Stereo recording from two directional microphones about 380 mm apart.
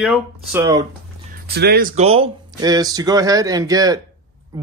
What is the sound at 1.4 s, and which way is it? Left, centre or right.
Speech, right.